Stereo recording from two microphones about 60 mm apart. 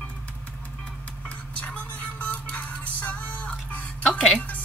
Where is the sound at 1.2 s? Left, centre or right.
Left.